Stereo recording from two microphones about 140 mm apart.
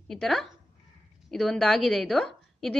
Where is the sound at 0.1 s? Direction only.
Centre (ahead or behind).